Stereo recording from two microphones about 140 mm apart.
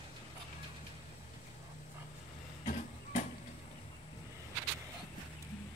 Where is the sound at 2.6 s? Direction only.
60° left (ahead or behind).